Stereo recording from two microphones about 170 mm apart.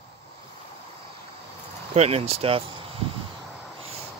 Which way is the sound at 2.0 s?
35° right (ahead or behind).